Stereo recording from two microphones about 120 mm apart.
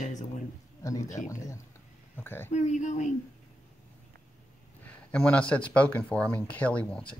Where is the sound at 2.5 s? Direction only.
90° left.